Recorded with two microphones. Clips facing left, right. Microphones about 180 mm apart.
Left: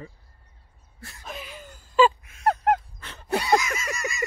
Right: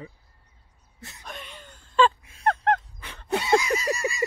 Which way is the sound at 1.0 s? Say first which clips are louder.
Even; 20° right (ahead or behind).